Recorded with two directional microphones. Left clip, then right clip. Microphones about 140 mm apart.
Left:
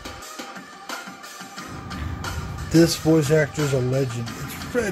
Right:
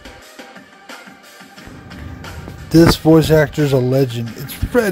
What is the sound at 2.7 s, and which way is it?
Speech, 65° right (ahead or behind).